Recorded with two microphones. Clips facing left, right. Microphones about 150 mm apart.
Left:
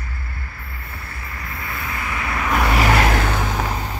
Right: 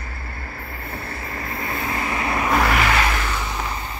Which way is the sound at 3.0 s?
55° left (ahead or behind).